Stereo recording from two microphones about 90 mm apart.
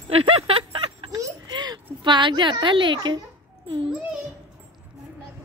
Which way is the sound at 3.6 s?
90° right.